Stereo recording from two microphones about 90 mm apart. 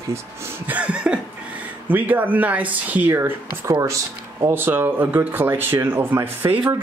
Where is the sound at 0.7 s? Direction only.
15° right (ahead or behind).